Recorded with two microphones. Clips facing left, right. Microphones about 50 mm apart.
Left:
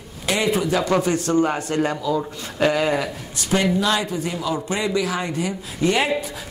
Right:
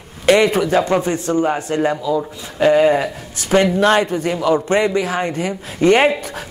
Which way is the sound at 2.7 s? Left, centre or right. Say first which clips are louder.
Right 7 dB; right.